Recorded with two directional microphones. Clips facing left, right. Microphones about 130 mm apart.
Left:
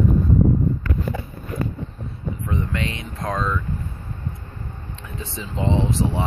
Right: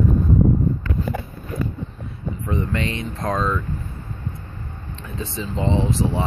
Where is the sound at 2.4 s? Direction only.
5° left (ahead or behind).